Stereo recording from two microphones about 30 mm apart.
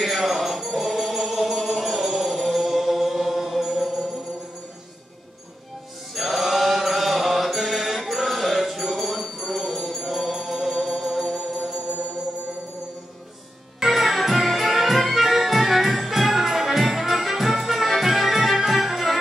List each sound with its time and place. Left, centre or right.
0.0 s music: centre
6.1 s mantra: centre
8.3 s music: centre; by 11.8 s right
13.9 s music: centre